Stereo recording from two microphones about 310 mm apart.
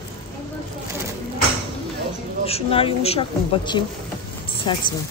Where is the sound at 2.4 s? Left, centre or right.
Centre.